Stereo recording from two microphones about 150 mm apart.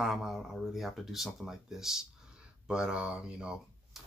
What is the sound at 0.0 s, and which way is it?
Speech, centre (ahead or behind).